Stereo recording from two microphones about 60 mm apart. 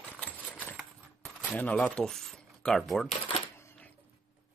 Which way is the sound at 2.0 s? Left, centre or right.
Centre.